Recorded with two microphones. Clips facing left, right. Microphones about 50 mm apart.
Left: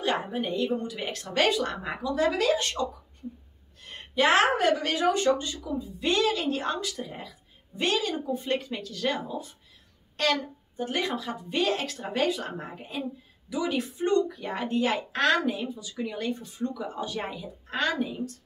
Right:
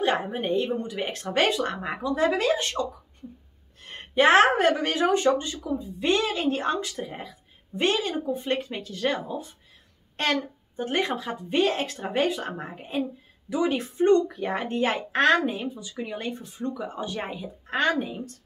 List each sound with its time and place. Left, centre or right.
0.2 s a woman's voice: right
3.8 s a sound: right
4.6 s speech: right
5.0 s a woman's voice: right
12.7 s a woman's voice: right